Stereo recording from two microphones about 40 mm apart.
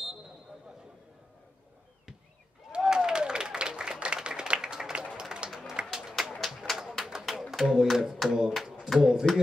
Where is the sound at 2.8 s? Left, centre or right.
Centre.